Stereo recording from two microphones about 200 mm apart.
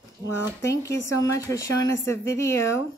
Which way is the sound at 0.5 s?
15° left (ahead or behind).